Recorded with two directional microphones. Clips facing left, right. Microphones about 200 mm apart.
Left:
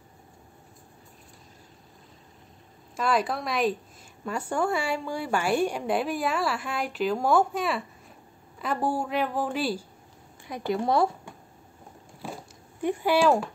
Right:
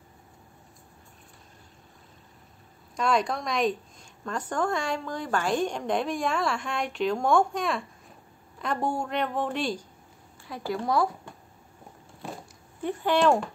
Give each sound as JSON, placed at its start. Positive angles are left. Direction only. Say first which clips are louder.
{"t": 3.0, "sound": "a woman's voice", "louder": "even", "side_deg": 5}
{"t": 10.4, "sound": "speech", "louder": "left 3 dB", "side_deg": 20}
{"t": 12.8, "sound": "a woman's voice", "louder": "left 1 dB", "side_deg": 10}